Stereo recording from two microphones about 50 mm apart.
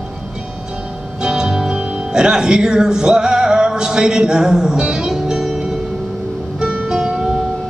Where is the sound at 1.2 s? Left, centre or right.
Centre.